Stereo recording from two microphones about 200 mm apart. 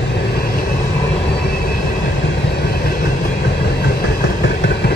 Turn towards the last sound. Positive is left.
turn(degrees=55)  # may be behind; listen again after turning